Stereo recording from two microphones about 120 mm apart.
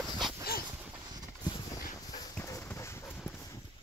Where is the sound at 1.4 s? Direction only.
35° left (ahead or behind).